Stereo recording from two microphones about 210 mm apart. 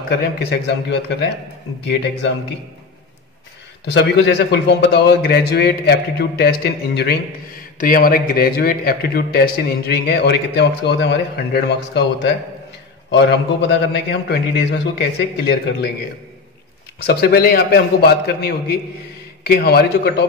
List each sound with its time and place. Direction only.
0.4 s a man's voice: 50° left (ahead or behind)
3.8 s a man's voice: 55° left (ahead or behind)
17.0 s a man's voice: 50° left (ahead or behind)